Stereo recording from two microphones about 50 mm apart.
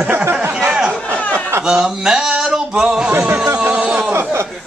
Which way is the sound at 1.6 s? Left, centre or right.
Centre.